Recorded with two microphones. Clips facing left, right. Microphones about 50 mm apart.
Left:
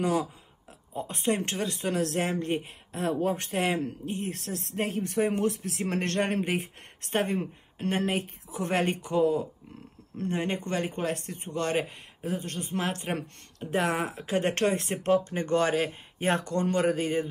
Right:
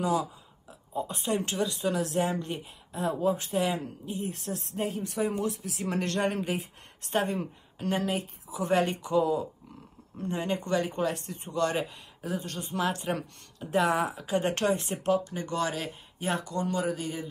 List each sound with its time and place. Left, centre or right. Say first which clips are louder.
0.0 s speech: left 1 dB; left